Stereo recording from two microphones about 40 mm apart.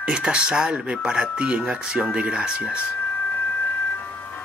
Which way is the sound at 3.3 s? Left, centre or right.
Left.